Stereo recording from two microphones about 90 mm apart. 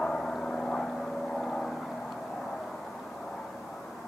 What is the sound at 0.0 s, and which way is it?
Vehicle, 5° left (ahead or behind).